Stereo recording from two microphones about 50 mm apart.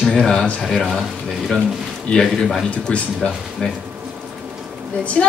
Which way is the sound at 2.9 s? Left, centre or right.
Left.